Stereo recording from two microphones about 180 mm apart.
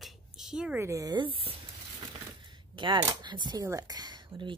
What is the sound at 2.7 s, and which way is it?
Speech, 25° right (ahead or behind).